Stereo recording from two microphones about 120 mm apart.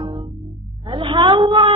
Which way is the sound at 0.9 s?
50° right (ahead or behind).